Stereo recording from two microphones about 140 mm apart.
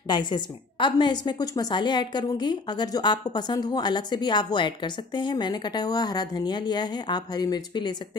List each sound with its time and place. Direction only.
0.1 s a woman's voice: 35° left (ahead or behind)